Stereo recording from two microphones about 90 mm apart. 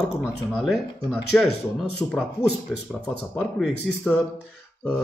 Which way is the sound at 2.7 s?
5° right (ahead or behind).